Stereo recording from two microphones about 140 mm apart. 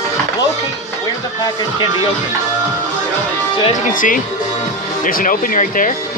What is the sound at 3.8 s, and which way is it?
Speech, 75° left (ahead or behind).